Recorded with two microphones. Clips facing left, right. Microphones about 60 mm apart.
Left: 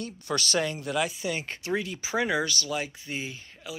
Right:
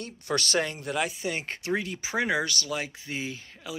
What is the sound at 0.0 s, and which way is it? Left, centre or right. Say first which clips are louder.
Speech: right 1 dB; right.